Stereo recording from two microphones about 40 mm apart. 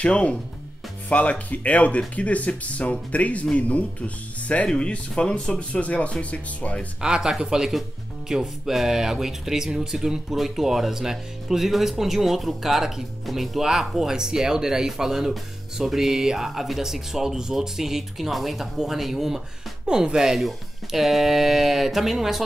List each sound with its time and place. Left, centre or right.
0.0 s speech: left
4.7 s speech: left
7.0 s speech: centre
20.3 s speech: centre